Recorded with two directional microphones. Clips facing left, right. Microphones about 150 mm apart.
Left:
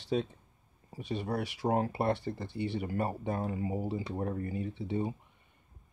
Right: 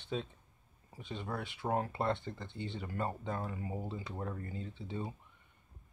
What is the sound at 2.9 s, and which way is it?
Speech, 15° left (ahead or behind).